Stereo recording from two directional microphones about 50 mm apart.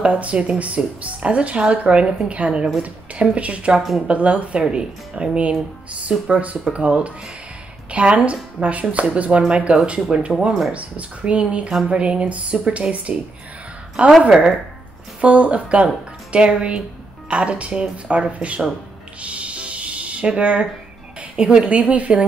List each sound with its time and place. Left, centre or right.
0.0 s speech: right
15.1 s speech: right
19.2 s a sound: right
21.2 s a woman's voice: centre